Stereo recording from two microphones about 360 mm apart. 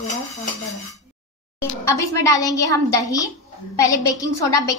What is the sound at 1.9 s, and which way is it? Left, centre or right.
A woman's voice, centre.